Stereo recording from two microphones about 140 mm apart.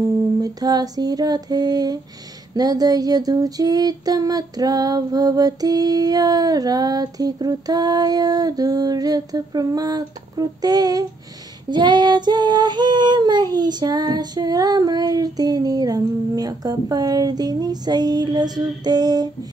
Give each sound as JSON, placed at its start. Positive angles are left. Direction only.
{"t": 0.0, "sound": "mantra", "side_deg": -25}
{"t": 2.5, "sound": "female singing", "side_deg": -30}